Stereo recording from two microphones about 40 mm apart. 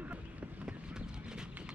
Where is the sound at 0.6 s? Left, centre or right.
Right.